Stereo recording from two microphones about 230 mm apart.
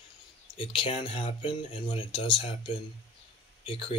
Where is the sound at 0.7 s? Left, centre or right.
Left.